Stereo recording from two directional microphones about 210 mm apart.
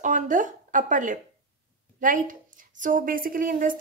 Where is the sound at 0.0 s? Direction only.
35° right (ahead or behind).